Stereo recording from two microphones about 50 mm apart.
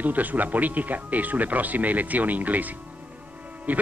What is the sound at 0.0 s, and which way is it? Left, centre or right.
Speech, right.